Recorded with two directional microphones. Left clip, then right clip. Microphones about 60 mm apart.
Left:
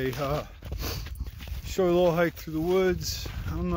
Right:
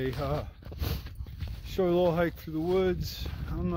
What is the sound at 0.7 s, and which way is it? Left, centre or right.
Horse, left.